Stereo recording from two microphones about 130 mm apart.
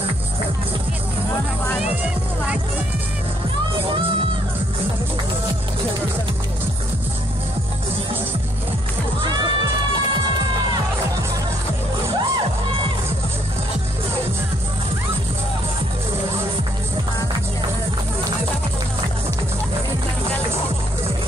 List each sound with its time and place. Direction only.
9.2 s music: 35° right (ahead or behind)